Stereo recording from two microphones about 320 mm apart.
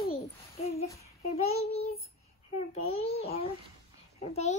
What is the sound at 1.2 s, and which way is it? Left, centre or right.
A child's voice, centre.